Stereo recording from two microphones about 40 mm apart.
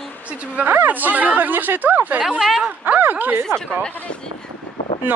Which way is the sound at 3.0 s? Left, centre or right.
Right.